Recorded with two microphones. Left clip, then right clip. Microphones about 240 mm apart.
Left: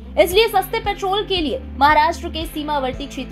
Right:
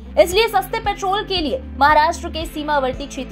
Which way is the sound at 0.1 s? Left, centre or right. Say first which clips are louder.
Even; right.